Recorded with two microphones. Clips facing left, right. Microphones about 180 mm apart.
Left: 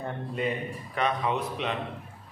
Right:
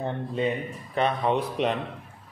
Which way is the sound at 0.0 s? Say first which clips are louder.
Right 4 dB; 25° right (ahead or behind).